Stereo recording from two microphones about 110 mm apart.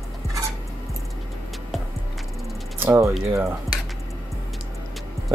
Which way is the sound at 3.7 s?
Centre (ahead or behind).